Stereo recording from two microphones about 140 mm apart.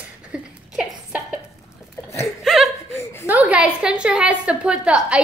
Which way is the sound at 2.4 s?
Centre (ahead or behind).